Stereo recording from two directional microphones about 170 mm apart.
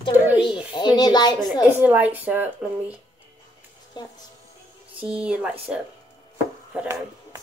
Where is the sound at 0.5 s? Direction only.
25° left (ahead or behind).